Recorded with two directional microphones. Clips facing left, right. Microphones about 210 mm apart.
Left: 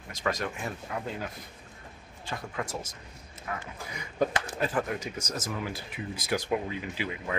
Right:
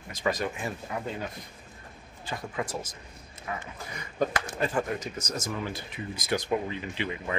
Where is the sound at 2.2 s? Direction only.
Centre (ahead or behind).